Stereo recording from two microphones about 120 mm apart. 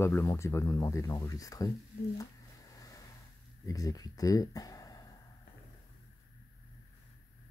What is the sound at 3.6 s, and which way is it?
Speech, 30° left (ahead or behind).